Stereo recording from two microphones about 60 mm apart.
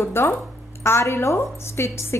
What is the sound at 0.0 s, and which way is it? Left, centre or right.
A woman's voice, left.